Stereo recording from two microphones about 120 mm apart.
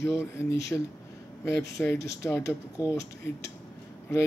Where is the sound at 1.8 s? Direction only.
25° left (ahead or behind).